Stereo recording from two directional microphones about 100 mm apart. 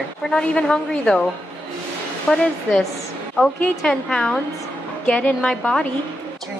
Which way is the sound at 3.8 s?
5° left (ahead or behind).